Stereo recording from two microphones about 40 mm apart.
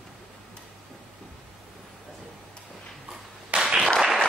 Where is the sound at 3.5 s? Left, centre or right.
Centre.